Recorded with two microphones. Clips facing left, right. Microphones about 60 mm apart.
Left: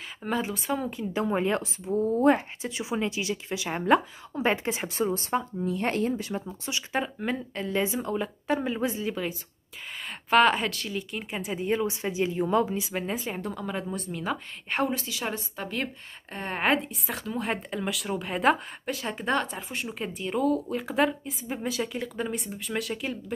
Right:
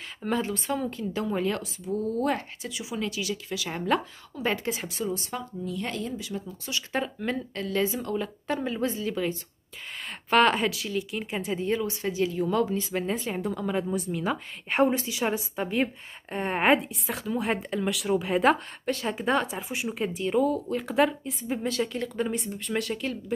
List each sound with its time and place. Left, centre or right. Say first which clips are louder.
0.3 s a woman's voice: right 1 dB; centre
1.1 s a woman's voice: left 3 dB; left
7.3 s a woman's voice: right 2 dB; centre
7.6 s a woman's voice: even; left
9.1 s a woman's voice: right 3 dB; centre
11.8 s a woman's voice: even; left; by 14.8 s centre
14.8 s a woman's voice: right 5 dB; right; by 23.3 s centre